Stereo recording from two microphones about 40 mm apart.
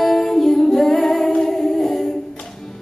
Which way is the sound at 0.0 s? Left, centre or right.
Centre.